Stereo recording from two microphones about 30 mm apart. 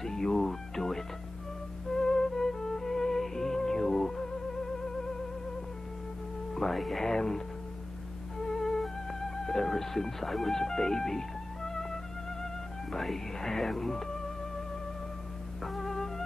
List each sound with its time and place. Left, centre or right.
0.0 s music: centre
6.5 s music: centre
7.0 s speech: centre
8.4 s music: centre
12.9 s speech: centre
15.6 s music: centre